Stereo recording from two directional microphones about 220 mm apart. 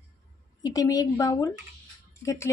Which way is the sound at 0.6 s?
15° left (ahead or behind).